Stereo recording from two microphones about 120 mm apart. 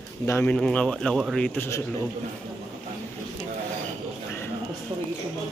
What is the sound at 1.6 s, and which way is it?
Speech, 15° left (ahead or behind).